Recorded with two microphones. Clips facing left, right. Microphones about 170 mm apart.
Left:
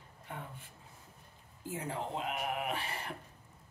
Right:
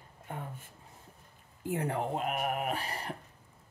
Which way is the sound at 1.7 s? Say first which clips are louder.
Right 6 dB; 60° right (ahead or behind).